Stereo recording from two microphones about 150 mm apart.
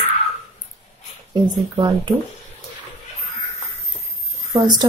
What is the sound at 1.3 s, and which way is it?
Speech, 30° right (ahead or behind).